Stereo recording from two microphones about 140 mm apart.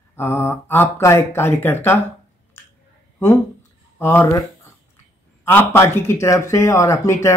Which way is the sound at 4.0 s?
15° left (ahead or behind).